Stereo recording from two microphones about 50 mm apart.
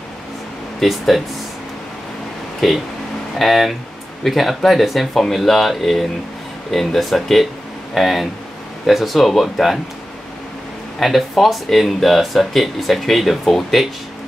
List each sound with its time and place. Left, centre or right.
0.7 s speech: centre
2.6 s speech: centre
11.0 s speech: centre